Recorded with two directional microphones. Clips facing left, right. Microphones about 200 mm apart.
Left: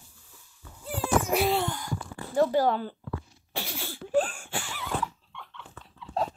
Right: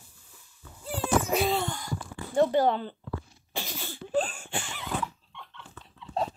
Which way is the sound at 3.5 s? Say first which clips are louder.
Left 1 dB; 10° left (ahead or behind).